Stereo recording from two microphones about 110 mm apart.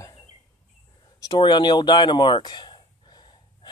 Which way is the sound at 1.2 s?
40° left (ahead or behind).